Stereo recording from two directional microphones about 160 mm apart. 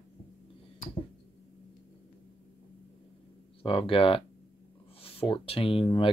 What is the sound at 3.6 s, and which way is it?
Speech, 35° left (ahead or behind).